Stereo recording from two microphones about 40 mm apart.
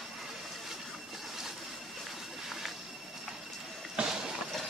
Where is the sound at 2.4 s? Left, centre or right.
Centre.